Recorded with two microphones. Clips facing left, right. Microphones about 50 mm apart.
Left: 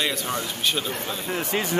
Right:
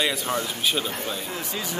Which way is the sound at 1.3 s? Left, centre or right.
Left.